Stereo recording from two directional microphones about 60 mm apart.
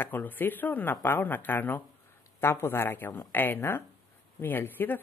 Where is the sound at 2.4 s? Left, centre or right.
Left.